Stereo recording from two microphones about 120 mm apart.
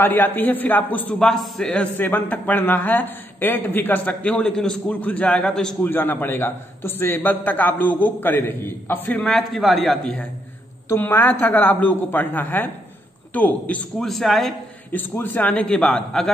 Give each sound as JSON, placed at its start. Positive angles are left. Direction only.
{"t": 0.0, "sound": "a man's voice", "side_deg": 15}
{"t": 5.8, "sound": "a man's voice", "side_deg": 15}
{"t": 9.3, "sound": "a man's voice", "side_deg": 0}
{"t": 10.9, "sound": "a man's voice", "side_deg": 15}
{"t": 14.9, "sound": "a man's voice", "side_deg": 15}